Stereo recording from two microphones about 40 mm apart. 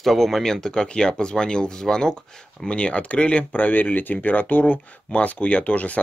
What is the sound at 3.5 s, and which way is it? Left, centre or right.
Speech, left.